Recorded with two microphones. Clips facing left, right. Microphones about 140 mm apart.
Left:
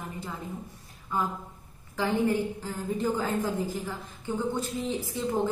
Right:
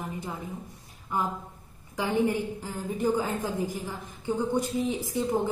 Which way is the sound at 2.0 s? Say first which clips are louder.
Even; 15° right (ahead or behind).